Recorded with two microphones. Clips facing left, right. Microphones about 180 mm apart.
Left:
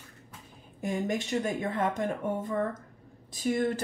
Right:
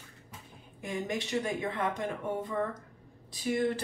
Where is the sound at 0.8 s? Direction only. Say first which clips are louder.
Left 4 dB; 45° left (ahead or behind).